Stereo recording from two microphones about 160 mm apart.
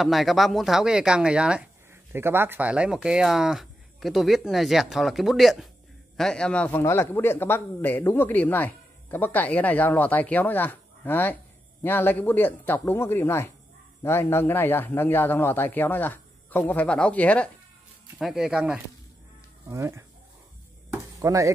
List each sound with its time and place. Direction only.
0.0 s speech: centre (ahead or behind)
18.2 s speech: 5° right (ahead or behind)
19.7 s speech: 20° right (ahead or behind)
21.2 s speech: 20° right (ahead or behind)